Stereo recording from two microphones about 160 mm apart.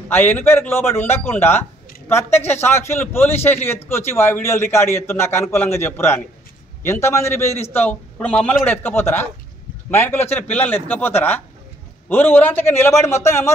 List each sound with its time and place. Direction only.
0.1 s a man's voice: 10° left (ahead or behind)